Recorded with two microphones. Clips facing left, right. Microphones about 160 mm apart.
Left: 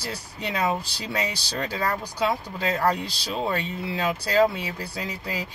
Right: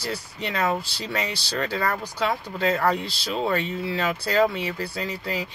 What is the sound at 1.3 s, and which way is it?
Speech, 10° left (ahead or behind).